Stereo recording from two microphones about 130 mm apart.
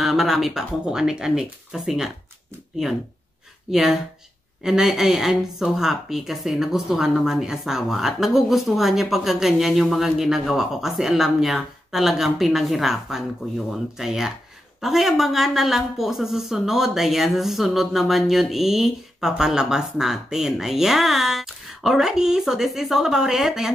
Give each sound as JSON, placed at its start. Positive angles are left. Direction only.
{"t": 0.0, "sound": "speech", "side_deg": 0}
{"t": 3.7, "sound": "speech", "side_deg": -5}